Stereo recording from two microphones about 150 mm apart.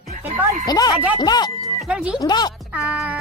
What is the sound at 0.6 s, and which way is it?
Speech, 25° left (ahead or behind).